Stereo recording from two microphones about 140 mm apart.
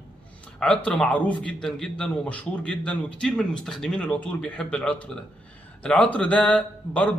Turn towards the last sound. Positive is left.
turn(degrees=10)  # may be behind; listen again after turning